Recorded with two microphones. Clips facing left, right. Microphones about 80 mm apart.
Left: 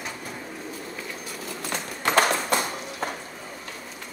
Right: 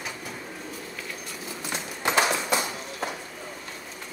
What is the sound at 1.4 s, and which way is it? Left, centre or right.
Clip-clop, left.